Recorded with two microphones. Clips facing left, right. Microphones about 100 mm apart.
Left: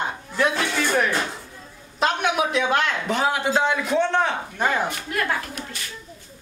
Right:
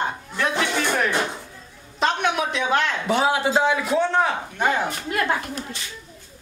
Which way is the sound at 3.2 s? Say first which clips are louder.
Right 2 dB; 25° right (ahead or behind).